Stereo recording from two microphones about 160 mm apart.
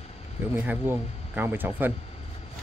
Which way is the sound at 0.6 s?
10° right (ahead or behind).